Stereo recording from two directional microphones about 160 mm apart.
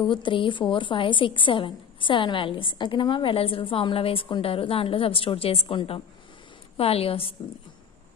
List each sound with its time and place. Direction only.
0.1 s a woman's voice: 30° left (ahead or behind)